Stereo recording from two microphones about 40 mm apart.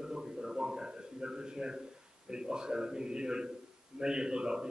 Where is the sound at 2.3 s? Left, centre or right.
Centre.